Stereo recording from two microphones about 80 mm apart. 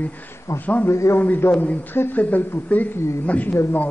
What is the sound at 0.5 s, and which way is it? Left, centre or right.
Speech, left.